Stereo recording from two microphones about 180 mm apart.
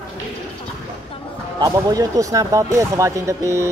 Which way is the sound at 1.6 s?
20° right (ahead or behind).